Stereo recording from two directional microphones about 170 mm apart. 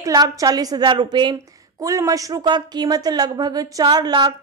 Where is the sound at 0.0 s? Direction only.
20° right (ahead or behind).